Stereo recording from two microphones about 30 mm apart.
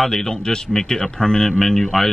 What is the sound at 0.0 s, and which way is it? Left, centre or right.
Speech, centre.